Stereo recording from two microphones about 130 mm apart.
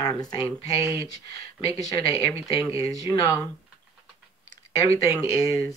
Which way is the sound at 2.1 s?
25° right (ahead or behind).